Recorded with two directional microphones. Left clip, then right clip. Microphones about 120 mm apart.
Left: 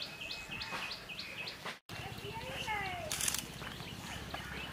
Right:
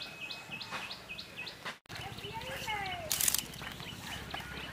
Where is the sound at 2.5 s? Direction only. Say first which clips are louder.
Right 1 dB; 30° right (ahead or behind).